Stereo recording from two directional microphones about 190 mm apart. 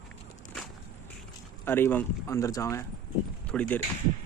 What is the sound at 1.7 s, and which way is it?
Speech, 10° left (ahead or behind).